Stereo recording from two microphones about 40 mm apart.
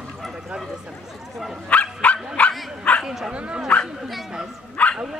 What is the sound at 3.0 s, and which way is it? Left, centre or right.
Speech, centre.